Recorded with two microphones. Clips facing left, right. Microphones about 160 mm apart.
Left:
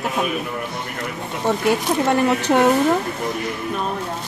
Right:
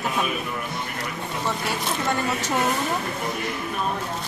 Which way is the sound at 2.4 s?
65° left (ahead or behind).